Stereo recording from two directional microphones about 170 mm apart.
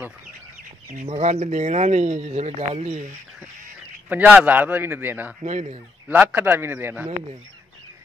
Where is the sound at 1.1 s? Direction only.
40° right (ahead or behind).